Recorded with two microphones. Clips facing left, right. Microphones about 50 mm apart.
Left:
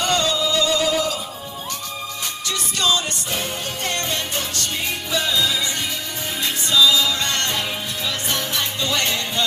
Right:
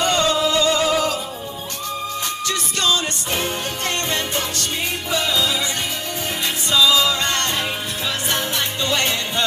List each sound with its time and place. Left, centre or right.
0.0 s music: right
3.3 s music: right
6.7 s music: right